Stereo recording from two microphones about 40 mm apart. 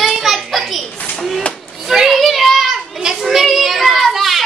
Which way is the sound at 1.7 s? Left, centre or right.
Centre.